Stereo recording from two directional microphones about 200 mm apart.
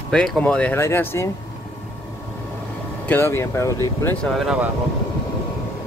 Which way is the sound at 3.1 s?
10° left (ahead or behind).